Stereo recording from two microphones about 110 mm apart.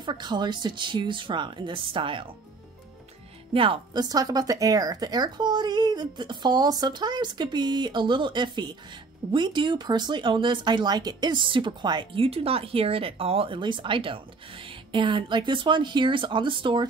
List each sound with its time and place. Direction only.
0.0 s speech: 45° right (ahead or behind)
3.5 s speech: 55° right (ahead or behind)
4.0 s a woman's voice: 35° right (ahead or behind)
12.2 s speech: 60° right (ahead or behind)